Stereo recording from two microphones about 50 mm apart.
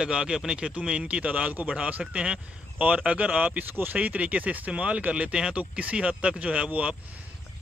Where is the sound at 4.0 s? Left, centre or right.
Right.